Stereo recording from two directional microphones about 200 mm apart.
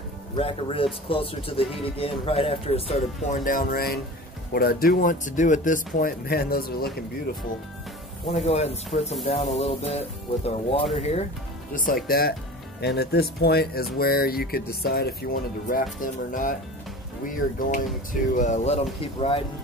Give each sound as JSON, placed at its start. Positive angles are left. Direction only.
{"t": 0.4, "sound": "speech", "side_deg": 25}
{"t": 8.3, "sound": "speech", "side_deg": 30}
{"t": 12.1, "sound": "speech", "side_deg": 50}